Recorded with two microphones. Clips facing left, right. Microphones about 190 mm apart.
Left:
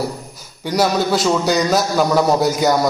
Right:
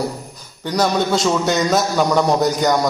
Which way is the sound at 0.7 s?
5° left (ahead or behind).